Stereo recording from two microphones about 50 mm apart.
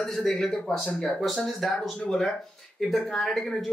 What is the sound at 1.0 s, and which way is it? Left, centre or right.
A man's voice, centre.